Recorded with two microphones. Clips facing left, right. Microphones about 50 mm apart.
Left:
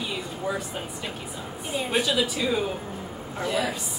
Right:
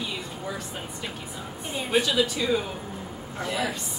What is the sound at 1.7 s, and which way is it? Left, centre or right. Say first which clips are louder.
Speech: even; centre.